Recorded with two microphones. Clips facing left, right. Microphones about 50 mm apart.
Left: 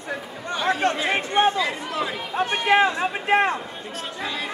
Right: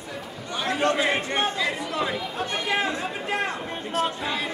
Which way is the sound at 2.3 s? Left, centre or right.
Left.